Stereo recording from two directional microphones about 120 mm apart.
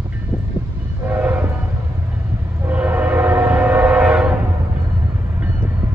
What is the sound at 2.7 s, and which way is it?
Train, 15° right (ahead or behind).